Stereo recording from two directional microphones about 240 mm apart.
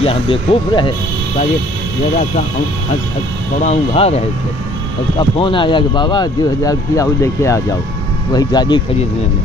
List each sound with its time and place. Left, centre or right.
0.0 s speech: left
3.6 s speech: left
5.4 s speech: centre